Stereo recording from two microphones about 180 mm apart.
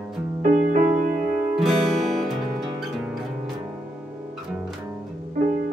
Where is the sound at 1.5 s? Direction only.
Centre (ahead or behind).